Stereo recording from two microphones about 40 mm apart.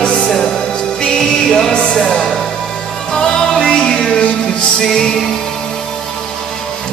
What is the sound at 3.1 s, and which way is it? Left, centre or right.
Music, centre.